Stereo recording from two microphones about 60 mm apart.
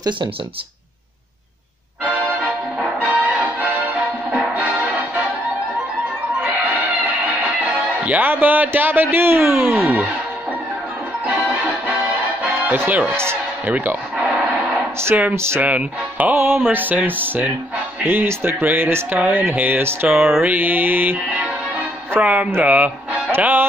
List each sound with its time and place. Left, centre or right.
3.0 s music: right
4.4 s music: centre
8.0 s music: right
8.3 s speech: right
12.7 s speech: right
13.1 s speech: right
13.7 s speech: right
15.3 s speech: right
15.6 s speech: right
19.0 s speech: right
22.2 s speech: centre; by 23.7 s right